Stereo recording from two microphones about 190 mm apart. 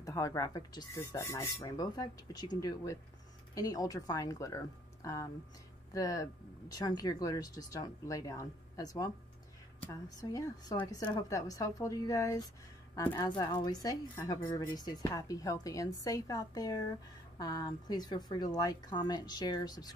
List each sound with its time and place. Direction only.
0.0 s a woman's voice: 15° left (ahead or behind)